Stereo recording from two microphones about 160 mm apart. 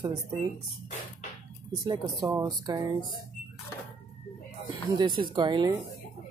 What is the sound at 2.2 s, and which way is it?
Speech, 20° right (ahead or behind).